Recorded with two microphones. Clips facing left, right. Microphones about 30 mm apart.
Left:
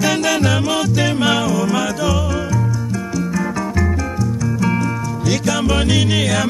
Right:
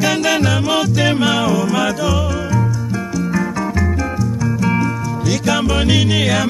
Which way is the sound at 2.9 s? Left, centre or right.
Right.